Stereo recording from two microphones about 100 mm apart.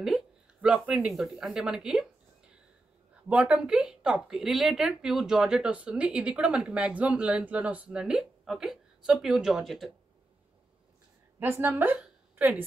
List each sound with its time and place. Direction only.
0.0 s speech: 5° right (ahead or behind)
3.3 s a woman's voice: 15° right (ahead or behind)
11.3 s a woman's voice: 20° right (ahead or behind)